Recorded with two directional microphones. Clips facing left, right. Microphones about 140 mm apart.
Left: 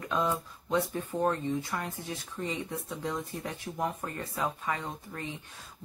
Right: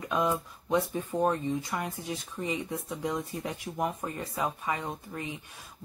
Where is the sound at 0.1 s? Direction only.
15° right (ahead or behind).